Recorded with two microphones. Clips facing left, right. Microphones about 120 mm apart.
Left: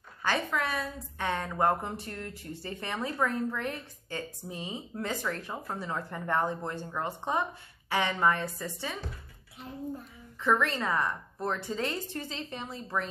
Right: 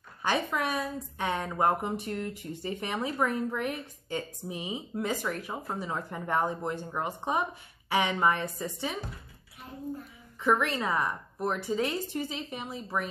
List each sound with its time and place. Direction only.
0.2 s a woman's voice: 15° right (ahead or behind)
10.4 s a woman's voice: 15° right (ahead or behind)